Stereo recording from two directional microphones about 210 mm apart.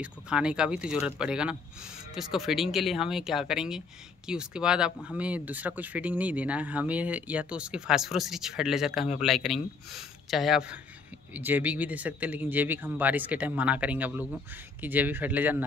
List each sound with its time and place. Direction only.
0.0 s speech: 5° right (ahead or behind)